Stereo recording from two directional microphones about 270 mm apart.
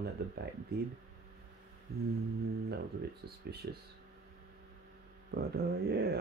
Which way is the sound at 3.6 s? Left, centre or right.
Right.